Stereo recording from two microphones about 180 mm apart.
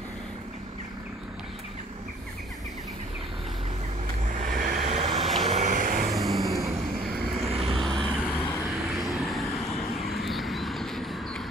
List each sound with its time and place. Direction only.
4.4 s vehicle: 50° right (ahead or behind)
4.8 s vehicle: 35° right (ahead or behind); by 6.1 s 50° right (ahead or behind)
6.1 s vehicle: centre (ahead or behind)
7.0 s vehicle: 55° right (ahead or behind)
7.2 s vehicle: centre (ahead or behind)
7.6 s vehicle: 30° right (ahead or behind)
7.9 s vehicle: 5° left (ahead or behind)
9.9 s a sound: centre (ahead or behind)